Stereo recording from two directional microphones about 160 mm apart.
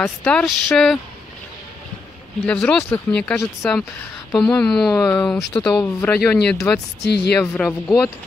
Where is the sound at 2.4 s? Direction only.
5° left (ahead or behind).